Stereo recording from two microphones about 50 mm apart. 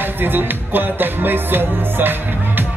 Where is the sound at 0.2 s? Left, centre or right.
Right.